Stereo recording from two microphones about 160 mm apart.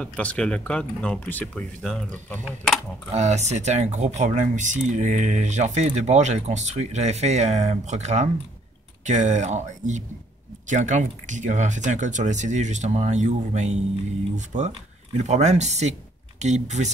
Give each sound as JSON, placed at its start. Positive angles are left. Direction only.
{"t": 0.0, "sound": "speech", "side_deg": 10}
{"t": 3.2, "sound": "speech", "side_deg": -45}